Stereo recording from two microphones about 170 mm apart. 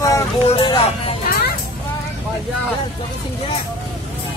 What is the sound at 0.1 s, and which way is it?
Vehicle, 25° left (ahead or behind).